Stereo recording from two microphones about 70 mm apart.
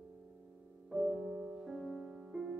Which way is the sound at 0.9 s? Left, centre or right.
Centre.